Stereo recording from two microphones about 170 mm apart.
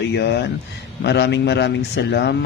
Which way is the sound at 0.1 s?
85° left.